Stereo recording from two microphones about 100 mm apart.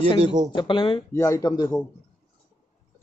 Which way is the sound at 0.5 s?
55° left (ahead or behind).